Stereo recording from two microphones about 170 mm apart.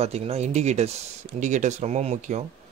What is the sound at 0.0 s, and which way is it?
Speech, 35° right (ahead or behind).